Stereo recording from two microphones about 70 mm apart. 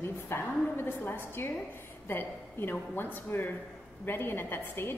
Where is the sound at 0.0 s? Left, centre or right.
Left.